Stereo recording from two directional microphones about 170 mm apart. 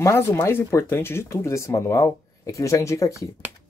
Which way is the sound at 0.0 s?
15° left (ahead or behind).